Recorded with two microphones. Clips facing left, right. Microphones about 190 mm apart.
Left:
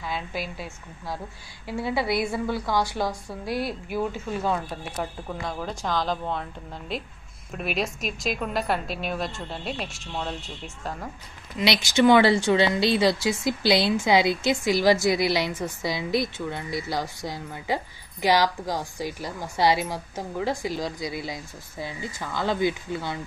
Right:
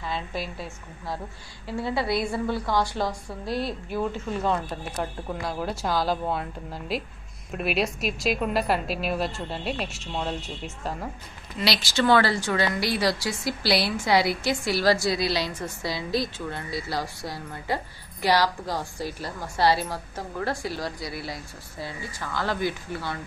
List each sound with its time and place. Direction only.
0.0 s speech: 5° left (ahead or behind)
1.7 s a woman's voice: 15° left (ahead or behind); by 11.1 s 5° right (ahead or behind)
11.5 s a woman's voice: 20° left (ahead or behind)